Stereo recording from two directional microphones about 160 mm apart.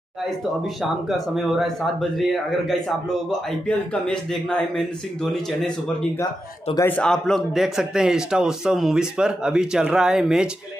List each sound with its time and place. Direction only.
1.0 s a man's voice: centre (ahead or behind)
6.7 s speech: 15° left (ahead or behind)
7.0 s a man's voice: 5° left (ahead or behind)